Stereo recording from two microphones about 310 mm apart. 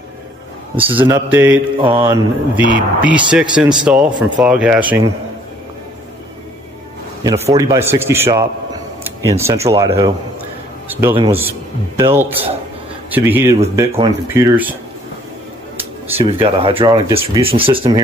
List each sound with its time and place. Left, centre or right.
0.9 s speech: centre
7.2 s speech: centre
16.2 s speech: centre